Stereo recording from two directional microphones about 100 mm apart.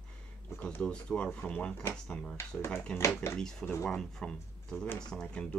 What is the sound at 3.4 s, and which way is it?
Speech, 5° left (ahead or behind).